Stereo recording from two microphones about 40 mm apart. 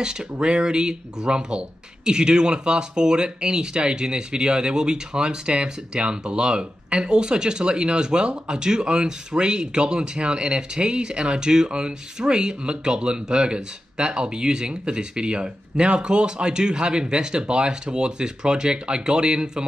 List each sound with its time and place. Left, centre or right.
0.0 s speech: centre